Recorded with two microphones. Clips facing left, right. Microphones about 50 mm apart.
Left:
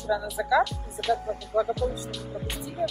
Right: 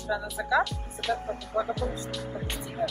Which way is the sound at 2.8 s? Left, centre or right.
Right.